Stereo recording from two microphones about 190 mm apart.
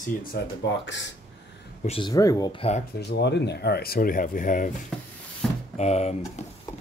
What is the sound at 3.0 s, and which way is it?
Speech, 65° left (ahead or behind).